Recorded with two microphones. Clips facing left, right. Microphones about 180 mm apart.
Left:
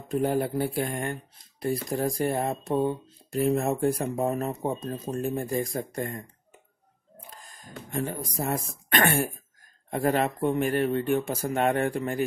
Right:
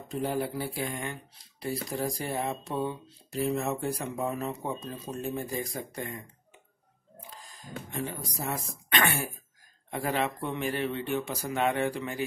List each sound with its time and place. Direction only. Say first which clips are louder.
0.1 s speech: left 5 dB; 50° left (ahead or behind)